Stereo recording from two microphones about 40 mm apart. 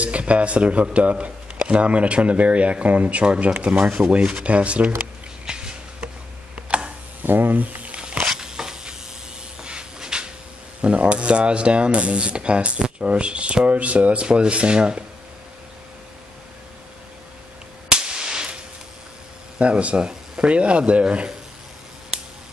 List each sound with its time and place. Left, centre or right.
0.0 s speech: right
5.4 s a sound: right
6.5 s tick: right
7.2 s speech: right
7.9 s a sound: right
8.3 s a sound: centre
10.8 s speech: right
17.8 s firecracker: right
19.6 s speech: right